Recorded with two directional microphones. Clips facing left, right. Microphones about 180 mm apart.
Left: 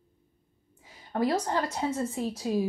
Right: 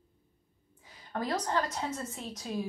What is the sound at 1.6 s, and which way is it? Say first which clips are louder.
Speech: left 4 dB; 25° left (ahead or behind).